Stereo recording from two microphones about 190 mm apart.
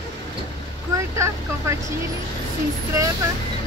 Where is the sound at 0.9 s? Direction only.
15° right (ahead or behind).